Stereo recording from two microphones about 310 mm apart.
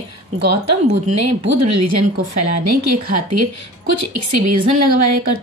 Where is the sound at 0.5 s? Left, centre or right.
Right.